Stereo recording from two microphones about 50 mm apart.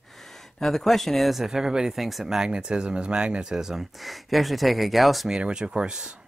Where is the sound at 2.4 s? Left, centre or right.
Centre.